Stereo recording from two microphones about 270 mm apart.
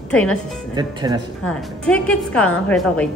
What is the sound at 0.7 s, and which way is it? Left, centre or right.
Speech, centre.